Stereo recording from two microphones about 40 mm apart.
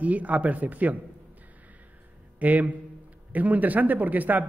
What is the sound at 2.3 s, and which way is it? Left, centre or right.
Speech, right.